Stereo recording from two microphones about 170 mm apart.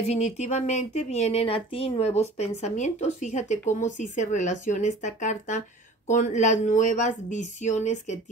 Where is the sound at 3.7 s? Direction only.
45° left (ahead or behind).